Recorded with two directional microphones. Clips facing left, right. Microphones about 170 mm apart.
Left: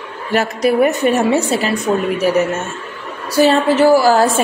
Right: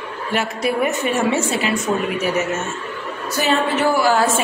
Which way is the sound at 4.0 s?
40° left (ahead or behind).